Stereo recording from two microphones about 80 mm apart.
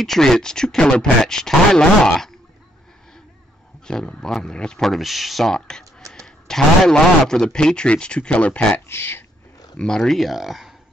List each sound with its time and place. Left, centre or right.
0.0 s a man's voice: centre
3.8 s a man's voice: centre
8.8 s speech: left
9.8 s speech: centre